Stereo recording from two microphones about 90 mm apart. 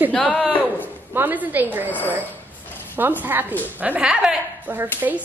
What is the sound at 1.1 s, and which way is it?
Speech, 20° right (ahead or behind).